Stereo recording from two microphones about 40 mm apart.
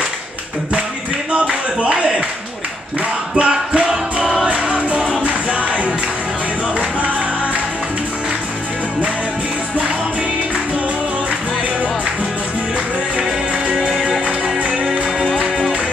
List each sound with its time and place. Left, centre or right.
1.3 s a sound: right
3.3 s music: right
13.7 s music: centre